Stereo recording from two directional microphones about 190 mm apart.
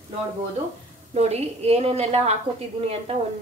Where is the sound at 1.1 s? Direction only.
35° right (ahead or behind).